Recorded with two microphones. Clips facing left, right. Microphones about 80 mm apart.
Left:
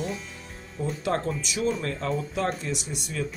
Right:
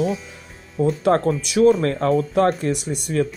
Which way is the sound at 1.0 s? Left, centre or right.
Right.